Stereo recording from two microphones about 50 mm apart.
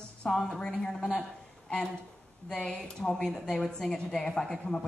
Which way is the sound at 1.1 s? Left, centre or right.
Centre.